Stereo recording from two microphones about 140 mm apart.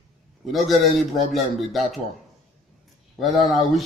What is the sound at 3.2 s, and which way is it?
Speech, centre (ahead or behind).